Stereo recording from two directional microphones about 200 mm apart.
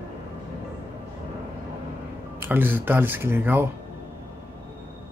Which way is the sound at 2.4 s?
10° right (ahead or behind).